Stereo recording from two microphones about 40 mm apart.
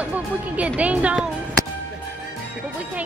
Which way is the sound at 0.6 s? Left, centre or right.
Right.